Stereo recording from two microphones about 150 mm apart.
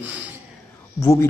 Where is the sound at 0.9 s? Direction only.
20° left (ahead or behind).